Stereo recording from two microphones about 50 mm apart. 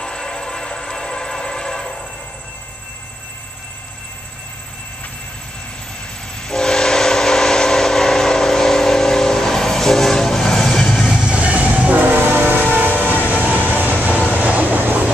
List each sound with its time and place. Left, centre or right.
0.0 s train: centre
6.4 s train: centre
11.1 s train: right
12.3 s train: right
13.0 s train: left
13.3 s train: right
14.3 s vehicle: right